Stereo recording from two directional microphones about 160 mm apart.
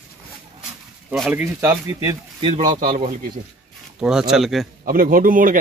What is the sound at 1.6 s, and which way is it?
Speech, 20° right (ahead or behind).